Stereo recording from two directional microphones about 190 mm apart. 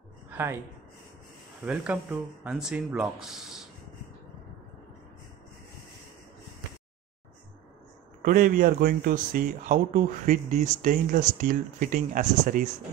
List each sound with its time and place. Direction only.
0.3 s a sound: 15° right (ahead or behind)
1.6 s speech: 5° right (ahead or behind)
8.2 s speech: 45° right (ahead or behind)